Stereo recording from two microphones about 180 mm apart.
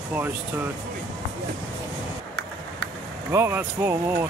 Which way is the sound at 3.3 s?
15° right (ahead or behind).